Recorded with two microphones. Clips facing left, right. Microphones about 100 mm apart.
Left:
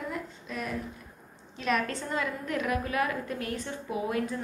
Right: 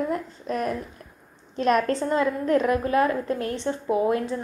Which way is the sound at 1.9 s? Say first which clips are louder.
Right 9 dB; 35° right (ahead or behind).